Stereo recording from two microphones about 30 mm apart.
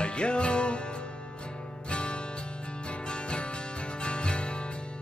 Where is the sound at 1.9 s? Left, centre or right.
Left.